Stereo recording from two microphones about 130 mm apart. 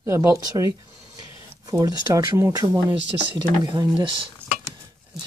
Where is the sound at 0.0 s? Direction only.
20° right (ahead or behind).